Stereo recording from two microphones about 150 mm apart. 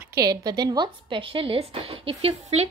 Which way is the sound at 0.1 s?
25° right (ahead or behind).